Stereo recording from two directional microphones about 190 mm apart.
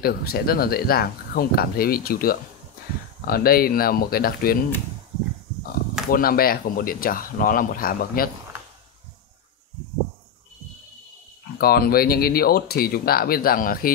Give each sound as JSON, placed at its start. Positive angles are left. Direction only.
{"t": 0.0, "sound": "speech", "side_deg": 55}
{"t": 6.0, "sound": "speech", "side_deg": 50}
{"t": 11.5, "sound": "speech", "side_deg": 50}